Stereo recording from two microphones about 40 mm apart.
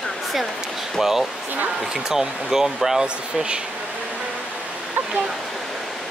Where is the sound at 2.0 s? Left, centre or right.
Centre.